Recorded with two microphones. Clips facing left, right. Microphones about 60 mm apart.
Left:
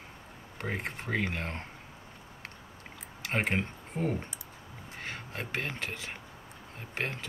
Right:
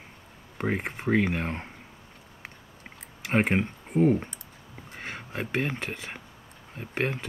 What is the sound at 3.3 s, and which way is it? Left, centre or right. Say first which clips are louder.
Speech: right 6 dB; centre.